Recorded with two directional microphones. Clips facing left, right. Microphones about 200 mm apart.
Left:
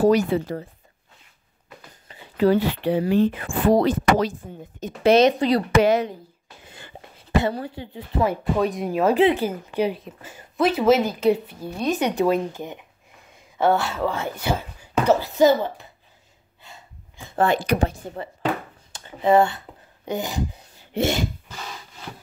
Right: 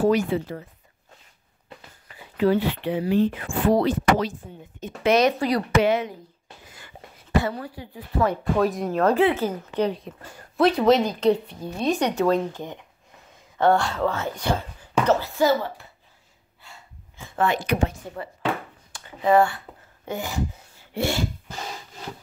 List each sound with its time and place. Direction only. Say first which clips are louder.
0.0 s speech: left 3 dB; 40° left (ahead or behind)
2.3 s speech: left 2 dB; 40° left (ahead or behind)
5.3 s speech: left 3 dB; 20° left (ahead or behind)
5.8 s speech: left 2 dB; 40° left (ahead or behind)
6.7 s a sound: left 7 dB; 30° left (ahead or behind)
7.4 s speech: left 3 dB; 25° left (ahead or behind)
8.3 s speech: even; centre (ahead or behind)
9.1 s a woman's voice: left 2 dB; 15° left (ahead or behind)
13.6 s a woman's voice: even; 5° left (ahead or behind)
16.6 s breathing: left 2 dB; 20° left (ahead or behind)
17.4 s speech: left 3 dB; 35° left (ahead or behind)
18.9 s speech: left 2 dB; 20° left (ahead or behind)
20.1 s a sound: left 2 dB; 20° left (ahead or behind)